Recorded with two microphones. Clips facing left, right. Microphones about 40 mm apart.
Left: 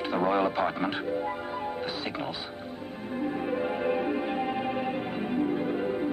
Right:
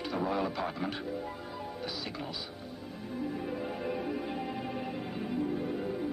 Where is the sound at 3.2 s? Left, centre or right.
Left.